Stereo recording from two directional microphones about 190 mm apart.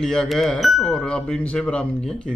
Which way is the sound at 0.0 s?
5° left (ahead or behind).